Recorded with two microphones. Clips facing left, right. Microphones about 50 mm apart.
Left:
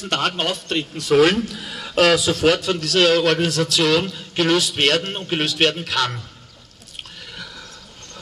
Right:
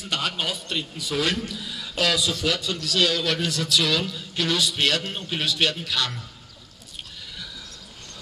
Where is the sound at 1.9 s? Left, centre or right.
Left.